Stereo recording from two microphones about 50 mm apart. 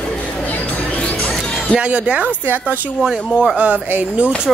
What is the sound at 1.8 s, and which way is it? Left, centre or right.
Speech, right.